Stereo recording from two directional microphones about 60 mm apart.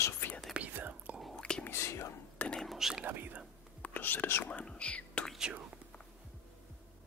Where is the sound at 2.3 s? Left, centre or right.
Centre.